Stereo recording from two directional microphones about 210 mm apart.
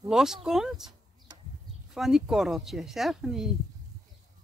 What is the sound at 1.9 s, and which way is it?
Speech, centre (ahead or behind).